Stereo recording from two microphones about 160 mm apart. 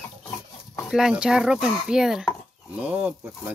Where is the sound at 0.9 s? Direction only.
5° right (ahead or behind).